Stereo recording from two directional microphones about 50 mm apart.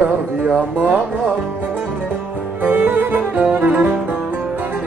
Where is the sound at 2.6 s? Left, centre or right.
Right.